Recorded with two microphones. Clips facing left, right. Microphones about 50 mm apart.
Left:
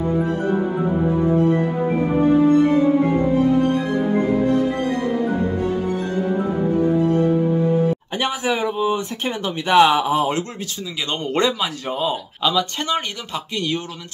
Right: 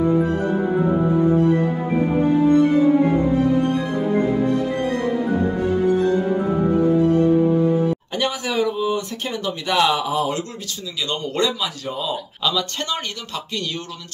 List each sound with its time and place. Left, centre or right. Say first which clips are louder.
8.1 s speech: left 2 dB; left
12.4 s speech: left 3 dB; centre